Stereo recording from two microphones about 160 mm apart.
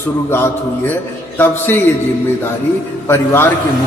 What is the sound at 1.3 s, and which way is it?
Speech, 15° left (ahead or behind).